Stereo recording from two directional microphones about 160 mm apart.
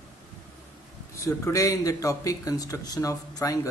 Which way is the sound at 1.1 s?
20° left (ahead or behind).